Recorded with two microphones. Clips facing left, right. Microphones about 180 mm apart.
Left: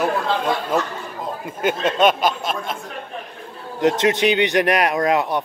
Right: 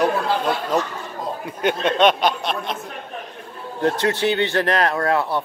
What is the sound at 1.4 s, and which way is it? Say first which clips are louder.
Speech: even; 5° left (ahead or behind).